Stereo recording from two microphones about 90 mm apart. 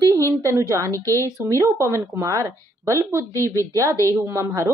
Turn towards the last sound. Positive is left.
turn(degrees=-30)  # may be behind; listen again after turning